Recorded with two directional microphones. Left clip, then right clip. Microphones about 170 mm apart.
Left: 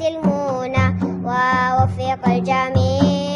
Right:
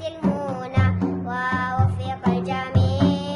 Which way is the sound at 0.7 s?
40° left (ahead or behind).